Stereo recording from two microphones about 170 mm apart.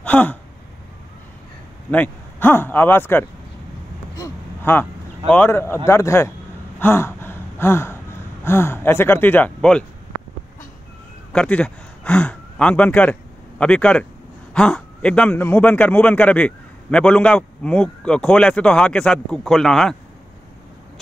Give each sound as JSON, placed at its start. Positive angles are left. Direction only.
{"t": 0.0, "sound": "a sound", "side_deg": 10}
{"t": 1.9, "sound": "speech", "side_deg": 10}
{"t": 4.1, "sound": "gasp", "side_deg": 15}
{"t": 5.3, "sound": "speech", "side_deg": 10}
{"t": 6.8, "sound": "gasp", "side_deg": 15}
{"t": 11.3, "sound": "a man's voice", "side_deg": 5}